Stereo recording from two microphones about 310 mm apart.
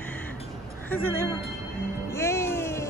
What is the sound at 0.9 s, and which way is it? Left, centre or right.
Speech, centre.